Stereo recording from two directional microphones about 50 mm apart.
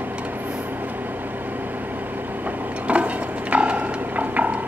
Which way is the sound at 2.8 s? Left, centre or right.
Right.